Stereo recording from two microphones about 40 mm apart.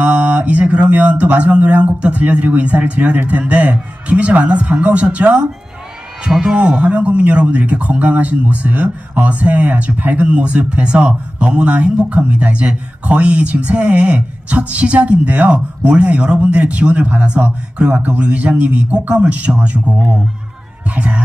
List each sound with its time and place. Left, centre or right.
0.0 s mantra: right
0.9 s speech: right
6.3 s speech: right
6.9 s speech: right